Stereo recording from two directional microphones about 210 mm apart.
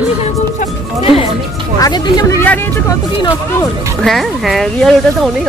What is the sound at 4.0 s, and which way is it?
A woman's voice, centre (ahead or behind).